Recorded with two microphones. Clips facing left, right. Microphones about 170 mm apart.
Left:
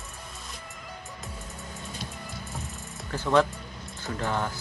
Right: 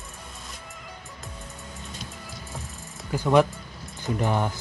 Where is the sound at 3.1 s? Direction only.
15° right (ahead or behind).